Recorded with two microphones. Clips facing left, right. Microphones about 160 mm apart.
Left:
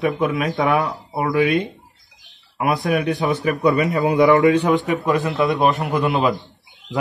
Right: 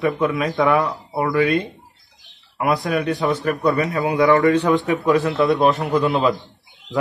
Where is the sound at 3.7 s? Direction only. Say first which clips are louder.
Left 2 dB; 20° left (ahead or behind).